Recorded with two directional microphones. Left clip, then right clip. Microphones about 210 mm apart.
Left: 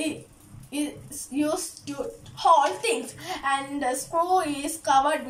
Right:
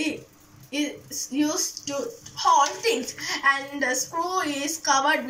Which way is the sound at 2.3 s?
15° left (ahead or behind).